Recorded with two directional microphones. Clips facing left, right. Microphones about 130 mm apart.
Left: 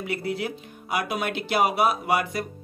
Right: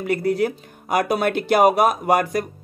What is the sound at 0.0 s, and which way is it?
Speech, 45° right (ahead or behind).